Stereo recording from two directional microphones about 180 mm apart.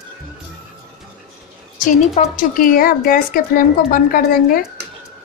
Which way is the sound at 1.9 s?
50° left (ahead or behind).